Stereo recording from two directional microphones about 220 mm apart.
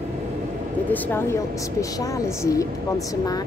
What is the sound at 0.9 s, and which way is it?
Speech, 10° left (ahead or behind).